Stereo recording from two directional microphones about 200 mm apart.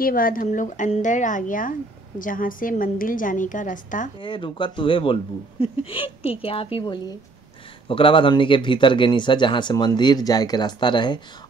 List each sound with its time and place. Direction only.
0.0 s a woman's voice: 45° left (ahead or behind)
4.2 s speech: 25° left (ahead or behind)